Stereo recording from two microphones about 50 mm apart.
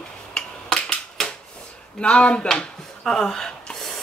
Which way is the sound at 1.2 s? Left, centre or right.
Centre.